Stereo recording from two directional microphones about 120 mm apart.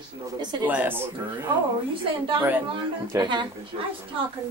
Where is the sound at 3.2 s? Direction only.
40° right (ahead or behind).